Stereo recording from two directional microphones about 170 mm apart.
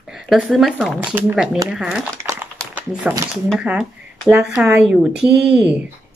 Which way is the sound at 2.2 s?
15° right (ahead or behind).